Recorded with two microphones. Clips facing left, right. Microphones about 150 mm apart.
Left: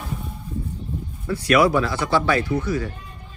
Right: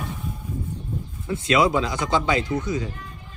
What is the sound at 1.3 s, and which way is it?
Speech, 20° right (ahead or behind).